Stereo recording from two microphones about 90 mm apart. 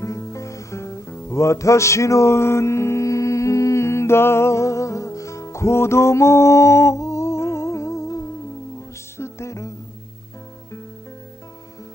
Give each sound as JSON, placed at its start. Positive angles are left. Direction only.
{"t": 0.0, "sound": "music", "side_deg": 35}